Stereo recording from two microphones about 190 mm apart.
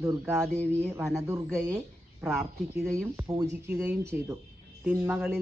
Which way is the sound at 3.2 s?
15° right (ahead or behind).